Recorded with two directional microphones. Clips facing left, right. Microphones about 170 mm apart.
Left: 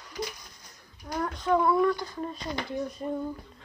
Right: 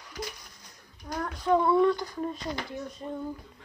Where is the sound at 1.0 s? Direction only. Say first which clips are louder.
Left 1 dB; 5° right (ahead or behind).